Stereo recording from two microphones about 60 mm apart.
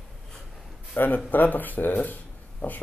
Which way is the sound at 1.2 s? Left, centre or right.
Left.